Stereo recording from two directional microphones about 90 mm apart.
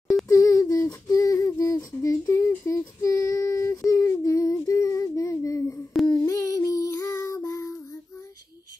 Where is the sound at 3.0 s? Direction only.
40° left (ahead or behind).